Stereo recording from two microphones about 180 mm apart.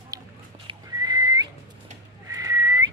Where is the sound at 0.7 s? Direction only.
20° right (ahead or behind).